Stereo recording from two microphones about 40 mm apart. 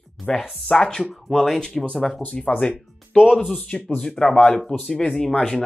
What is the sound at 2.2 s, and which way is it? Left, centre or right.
Speech, left.